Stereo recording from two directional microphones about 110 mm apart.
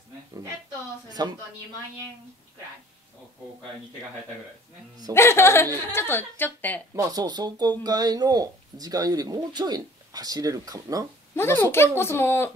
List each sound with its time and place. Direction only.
1.2 s speech: 40° right (ahead or behind)
5.1 s a woman's voice: 25° left (ahead or behind)
7.0 s speech: 35° right (ahead or behind)
11.3 s a woman's voice: 20° left (ahead or behind)